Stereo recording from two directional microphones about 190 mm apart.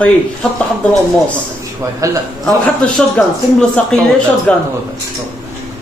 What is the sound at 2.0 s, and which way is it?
Speech, 15° right (ahead or behind).